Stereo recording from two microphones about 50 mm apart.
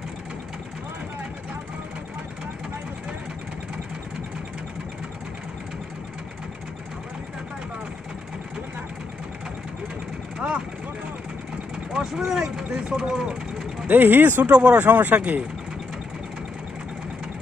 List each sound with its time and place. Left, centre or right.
10.4 s vehicle: right
11.9 s speech: centre
13.8 s speech: right
14.5 s speech: right
14.8 s speech: right